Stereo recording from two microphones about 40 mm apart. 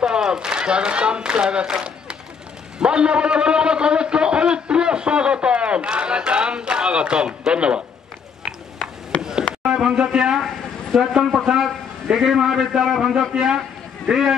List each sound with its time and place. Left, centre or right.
0.0 s a man's voice: centre
9.1 s a sound: left
9.7 s a man's voice: centre